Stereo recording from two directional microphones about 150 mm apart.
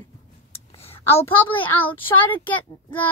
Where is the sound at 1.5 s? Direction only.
10° left (ahead or behind).